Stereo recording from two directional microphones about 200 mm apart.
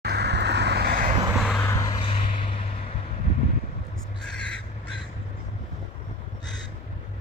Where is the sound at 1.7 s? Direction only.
20° left (ahead or behind).